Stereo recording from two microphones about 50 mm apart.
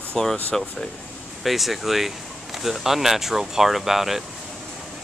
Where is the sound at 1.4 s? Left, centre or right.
Centre.